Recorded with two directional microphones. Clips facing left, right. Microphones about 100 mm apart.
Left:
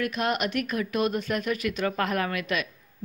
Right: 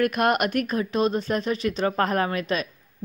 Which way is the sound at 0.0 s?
50° right (ahead or behind).